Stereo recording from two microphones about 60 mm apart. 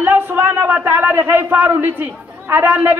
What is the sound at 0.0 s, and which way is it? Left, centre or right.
A man's voice, right.